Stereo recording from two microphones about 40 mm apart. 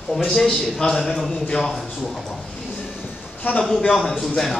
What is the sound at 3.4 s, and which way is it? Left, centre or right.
Speech, left.